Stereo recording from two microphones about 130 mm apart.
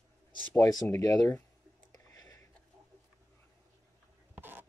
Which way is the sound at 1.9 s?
30° left (ahead or behind).